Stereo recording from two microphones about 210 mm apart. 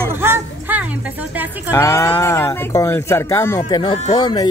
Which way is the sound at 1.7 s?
15° left (ahead or behind).